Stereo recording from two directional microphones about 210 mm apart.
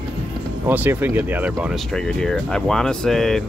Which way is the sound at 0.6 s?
10° right (ahead or behind).